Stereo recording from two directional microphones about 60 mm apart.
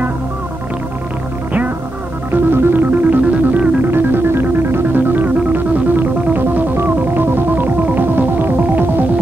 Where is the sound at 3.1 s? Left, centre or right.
Right.